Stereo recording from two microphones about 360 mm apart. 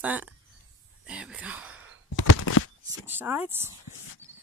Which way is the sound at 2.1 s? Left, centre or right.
Left.